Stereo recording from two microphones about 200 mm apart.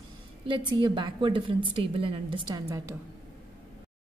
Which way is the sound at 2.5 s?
15° right (ahead or behind).